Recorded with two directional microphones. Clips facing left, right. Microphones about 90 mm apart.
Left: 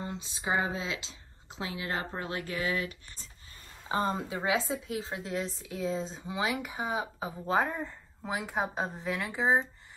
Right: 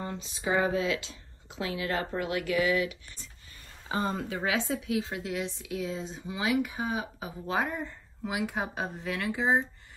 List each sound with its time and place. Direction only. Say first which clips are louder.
0.0 s a woman's voice: right 2 dB; 25° left (ahead or behind)